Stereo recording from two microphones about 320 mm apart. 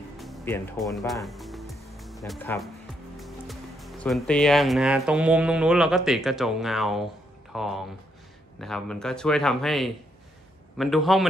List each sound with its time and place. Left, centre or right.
0.2 s music: centre
3.2 s speech: centre